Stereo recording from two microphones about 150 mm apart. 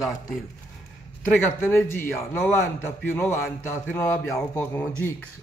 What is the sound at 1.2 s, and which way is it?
Speech, 15° left (ahead or behind).